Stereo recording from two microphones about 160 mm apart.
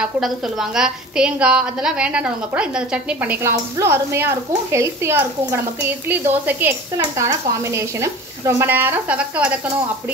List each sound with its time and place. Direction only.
0.0 s a woman's voice: 5° right (ahead or behind)